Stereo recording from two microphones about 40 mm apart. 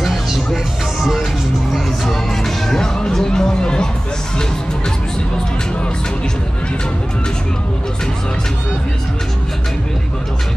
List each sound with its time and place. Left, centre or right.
0.0 s music: centre
2.0 s music: centre